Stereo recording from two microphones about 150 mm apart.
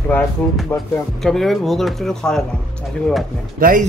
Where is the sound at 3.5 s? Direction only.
70° right (ahead or behind).